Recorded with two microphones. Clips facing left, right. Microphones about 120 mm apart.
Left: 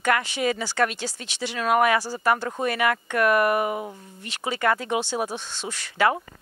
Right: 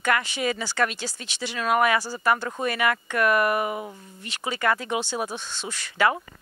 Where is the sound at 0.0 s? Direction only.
50° left (ahead or behind); by 5.7 s 30° left (ahead or behind).